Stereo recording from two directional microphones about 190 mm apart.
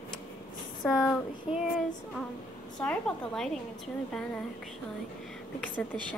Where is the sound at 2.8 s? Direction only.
5° left (ahead or behind).